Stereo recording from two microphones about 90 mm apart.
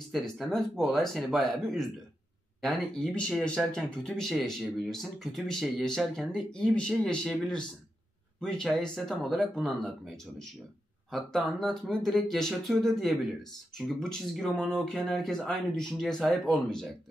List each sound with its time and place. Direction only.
0.1 s speech: 5° left (ahead or behind)